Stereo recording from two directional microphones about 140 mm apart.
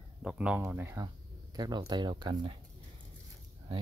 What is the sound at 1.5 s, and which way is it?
Speech, 30° right (ahead or behind).